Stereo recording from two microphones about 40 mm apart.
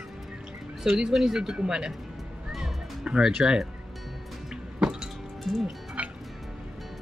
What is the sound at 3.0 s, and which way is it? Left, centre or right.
Speech, right.